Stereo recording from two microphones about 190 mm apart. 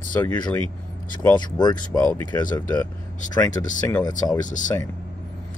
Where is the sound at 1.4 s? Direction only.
25° left (ahead or behind).